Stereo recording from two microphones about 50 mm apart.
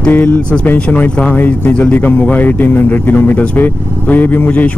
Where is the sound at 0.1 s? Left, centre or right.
Left.